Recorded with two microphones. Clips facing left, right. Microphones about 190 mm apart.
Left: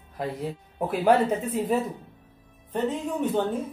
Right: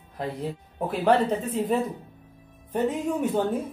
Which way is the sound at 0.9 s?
10° left (ahead or behind).